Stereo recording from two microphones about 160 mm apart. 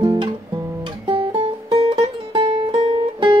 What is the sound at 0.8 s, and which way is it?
Music, 30° right (ahead or behind).